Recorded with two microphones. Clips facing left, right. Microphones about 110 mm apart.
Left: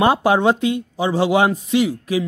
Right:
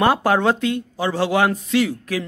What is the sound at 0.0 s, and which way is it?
A man's voice, 20° left (ahead or behind).